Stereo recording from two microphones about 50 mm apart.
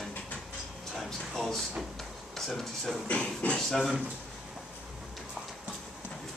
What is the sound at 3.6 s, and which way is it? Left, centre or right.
Speech, centre.